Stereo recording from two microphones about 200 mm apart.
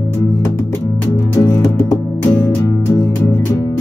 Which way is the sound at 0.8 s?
15° left (ahead or behind).